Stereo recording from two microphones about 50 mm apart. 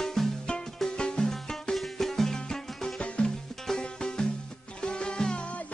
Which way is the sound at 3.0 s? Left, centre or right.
Left.